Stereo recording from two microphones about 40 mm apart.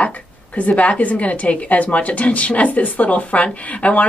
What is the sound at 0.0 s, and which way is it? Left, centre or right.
A woman's voice, left.